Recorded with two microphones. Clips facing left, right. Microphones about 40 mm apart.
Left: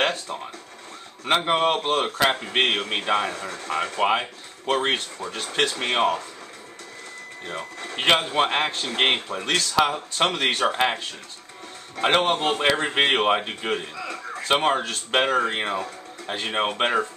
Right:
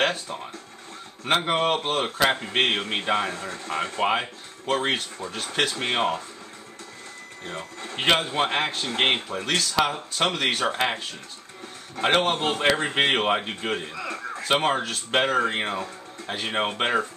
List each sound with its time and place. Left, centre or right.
0.1 s speech: centre
3.7 s a man's voice: centre
8.0 s a man's voice: centre
12.0 s a man's voice: centre
13.9 s a man's voice: centre
14.4 s speech: centre